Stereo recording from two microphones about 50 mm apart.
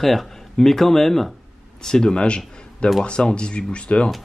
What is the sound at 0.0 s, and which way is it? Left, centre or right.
Speech, centre.